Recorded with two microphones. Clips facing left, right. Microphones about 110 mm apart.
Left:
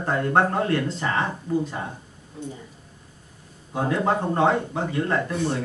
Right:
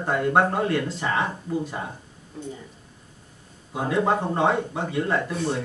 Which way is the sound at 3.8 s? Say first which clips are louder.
Right 1 dB; 5° right (ahead or behind).